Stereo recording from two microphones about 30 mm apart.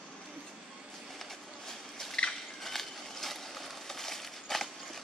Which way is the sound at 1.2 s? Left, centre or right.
Centre.